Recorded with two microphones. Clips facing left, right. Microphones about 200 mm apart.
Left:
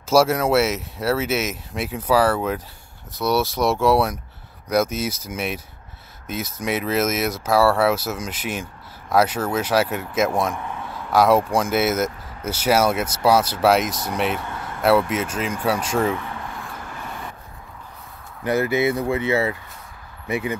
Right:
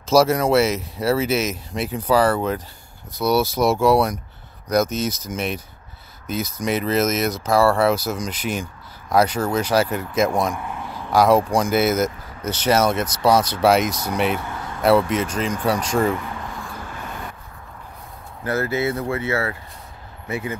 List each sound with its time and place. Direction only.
0.1 s speech: 5° left (ahead or behind)
18.4 s speech: 15° left (ahead or behind)